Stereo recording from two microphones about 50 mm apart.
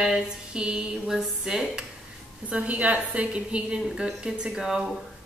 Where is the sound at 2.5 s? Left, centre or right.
Right.